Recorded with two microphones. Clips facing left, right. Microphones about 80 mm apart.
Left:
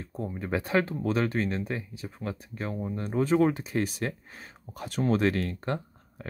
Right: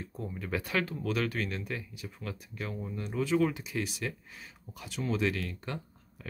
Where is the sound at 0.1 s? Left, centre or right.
Left.